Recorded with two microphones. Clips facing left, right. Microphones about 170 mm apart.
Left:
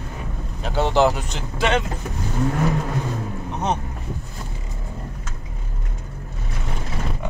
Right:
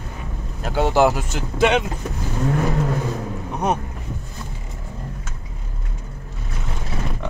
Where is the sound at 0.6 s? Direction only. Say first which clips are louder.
Right 1 dB; 10° right (ahead or behind).